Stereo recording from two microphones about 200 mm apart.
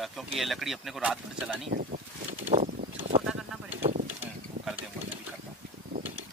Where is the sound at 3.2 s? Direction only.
5° right (ahead or behind).